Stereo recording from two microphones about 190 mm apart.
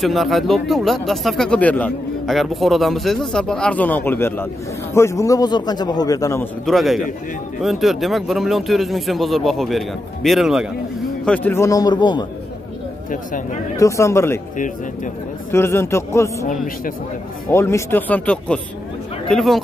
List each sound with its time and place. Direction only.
0.0 s a man's voice: centre (ahead or behind)
6.6 s speech: centre (ahead or behind)
11.2 s a man's voice: 10° left (ahead or behind); by 12.3 s 25° left (ahead or behind)
13.1 s speech: 45° left (ahead or behind)
13.7 s a man's voice: 15° left (ahead or behind)
15.5 s a man's voice: 15° left (ahead or behind)
17.5 s a man's voice: 15° left (ahead or behind)